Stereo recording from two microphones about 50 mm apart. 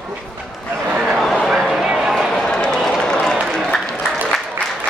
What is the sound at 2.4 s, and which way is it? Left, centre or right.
Run, centre.